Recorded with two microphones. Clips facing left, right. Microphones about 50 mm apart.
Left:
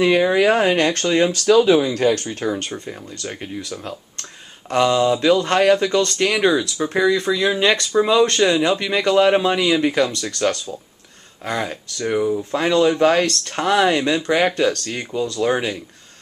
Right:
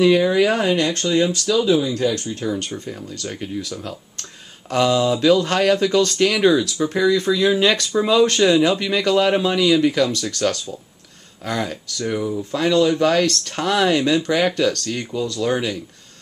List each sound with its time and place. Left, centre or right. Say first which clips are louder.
0.0 s speech: even; left
3.3 s speech: right 2 dB; centre
4.7 s speech: left 1 dB; centre; by 10.1 s left
10.4 s speech: left 2 dB; centre
12.3 s speech: left 3 dB; centre
12.5 s speech: even; left